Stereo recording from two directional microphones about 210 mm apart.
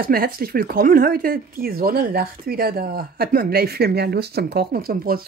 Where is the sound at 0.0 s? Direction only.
45° right (ahead or behind).